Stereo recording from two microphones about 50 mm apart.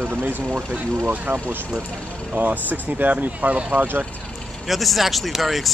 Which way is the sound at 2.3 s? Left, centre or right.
Right.